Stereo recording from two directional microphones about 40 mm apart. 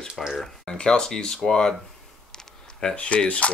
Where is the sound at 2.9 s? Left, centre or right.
Left.